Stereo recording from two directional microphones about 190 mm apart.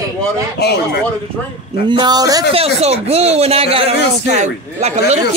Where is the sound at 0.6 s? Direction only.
60° left (ahead or behind).